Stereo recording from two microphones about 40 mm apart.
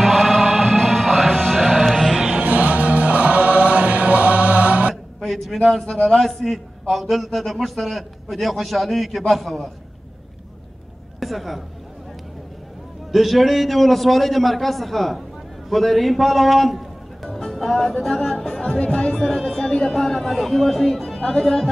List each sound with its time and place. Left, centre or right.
0.0 s music: centre
2.1 s music: centre
2.4 s choir: right
5.2 s a sound: centre
5.9 s a man's voice: centre
11.1 s a woman's voice: centre
13.1 s a man's voice: centre; by 19.1 s left
19.1 s speech: centre
19.9 s a man's voice: centre